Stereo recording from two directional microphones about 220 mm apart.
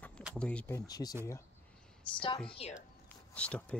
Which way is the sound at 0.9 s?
15° left (ahead or behind).